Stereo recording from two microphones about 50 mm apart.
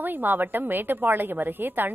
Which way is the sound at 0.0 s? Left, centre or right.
Right.